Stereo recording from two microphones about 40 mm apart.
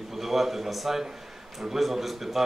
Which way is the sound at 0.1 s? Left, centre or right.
Centre.